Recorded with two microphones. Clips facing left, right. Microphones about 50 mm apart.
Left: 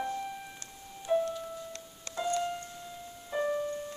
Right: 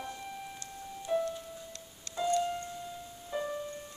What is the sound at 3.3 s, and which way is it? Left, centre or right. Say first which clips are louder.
Music: left 5 dB; left.